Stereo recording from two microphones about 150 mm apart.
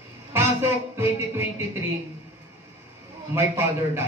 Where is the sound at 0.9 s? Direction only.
15° right (ahead or behind).